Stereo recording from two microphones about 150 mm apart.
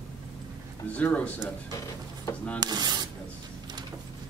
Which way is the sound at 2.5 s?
25° right (ahead or behind).